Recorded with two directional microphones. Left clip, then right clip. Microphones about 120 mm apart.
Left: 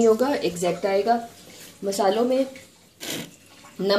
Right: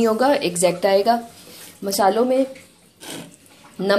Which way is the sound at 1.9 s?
10° right (ahead or behind).